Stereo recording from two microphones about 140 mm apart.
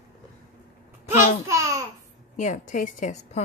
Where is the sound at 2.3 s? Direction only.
60° left (ahead or behind).